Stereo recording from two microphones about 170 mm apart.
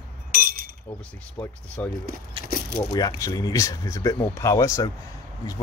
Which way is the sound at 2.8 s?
25° left (ahead or behind).